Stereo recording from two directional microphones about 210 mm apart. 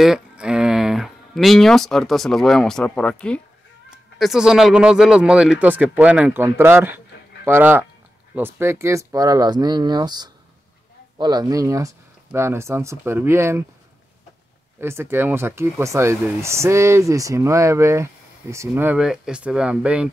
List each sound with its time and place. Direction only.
0.0 s speech: 5° right (ahead or behind)
14.8 s speech: 10° right (ahead or behind)